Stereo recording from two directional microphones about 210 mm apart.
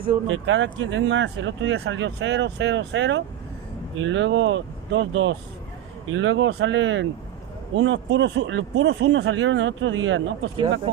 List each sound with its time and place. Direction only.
0.3 s speech: 65° right (ahead or behind)